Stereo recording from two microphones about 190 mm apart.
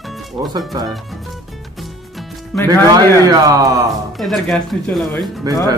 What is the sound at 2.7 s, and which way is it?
Speech, 20° right (ahead or behind).